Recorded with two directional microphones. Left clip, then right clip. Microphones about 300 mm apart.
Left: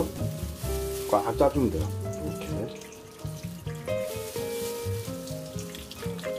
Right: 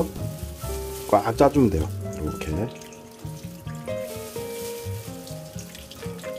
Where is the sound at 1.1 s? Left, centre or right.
Right.